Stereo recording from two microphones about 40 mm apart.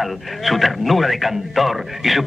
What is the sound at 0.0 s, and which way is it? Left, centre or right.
A man's voice, centre.